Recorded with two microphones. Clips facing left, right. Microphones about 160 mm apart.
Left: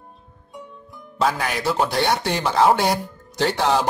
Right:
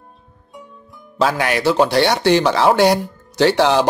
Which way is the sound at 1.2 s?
80° right.